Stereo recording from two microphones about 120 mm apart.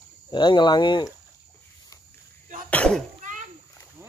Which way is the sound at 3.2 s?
90° right.